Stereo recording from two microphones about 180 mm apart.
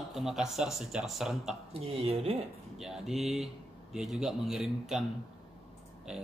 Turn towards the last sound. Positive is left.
turn(degrees=-5)  # may be behind; listen again after turning